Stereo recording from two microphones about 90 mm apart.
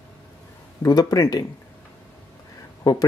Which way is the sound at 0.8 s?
45° left (ahead or behind).